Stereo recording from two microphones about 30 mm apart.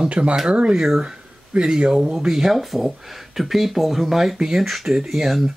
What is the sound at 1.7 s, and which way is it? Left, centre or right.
Speech, right.